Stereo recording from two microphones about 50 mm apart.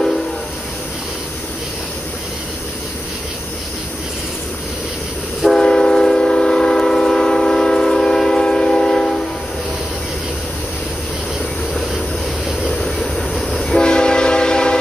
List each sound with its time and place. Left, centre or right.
5.6 s train: centre
12.6 s train: centre